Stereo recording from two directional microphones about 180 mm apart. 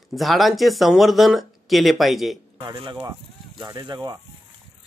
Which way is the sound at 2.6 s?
25° right (ahead or behind).